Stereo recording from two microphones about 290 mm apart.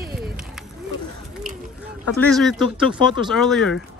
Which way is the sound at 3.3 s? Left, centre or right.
Centre.